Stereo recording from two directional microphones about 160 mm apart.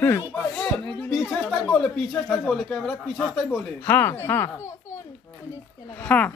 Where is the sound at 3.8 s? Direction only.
15° left (ahead or behind).